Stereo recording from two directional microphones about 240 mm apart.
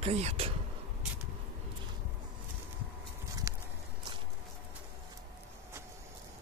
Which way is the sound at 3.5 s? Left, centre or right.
Centre.